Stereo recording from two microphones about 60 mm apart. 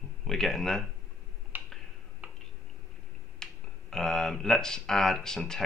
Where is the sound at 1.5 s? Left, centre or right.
Right.